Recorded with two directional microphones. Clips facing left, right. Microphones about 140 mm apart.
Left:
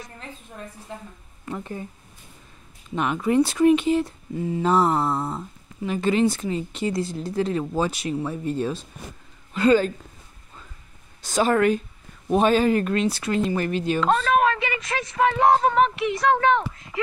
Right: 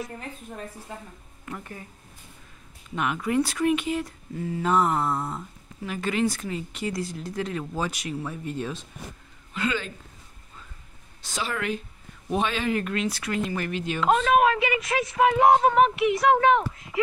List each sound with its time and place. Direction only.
1.4 s speech: 25° left (ahead or behind)
3.0 s speech: 30° left (ahead or behind)
11.2 s speech: 45° left (ahead or behind)
14.0 s speech: 10° right (ahead or behind)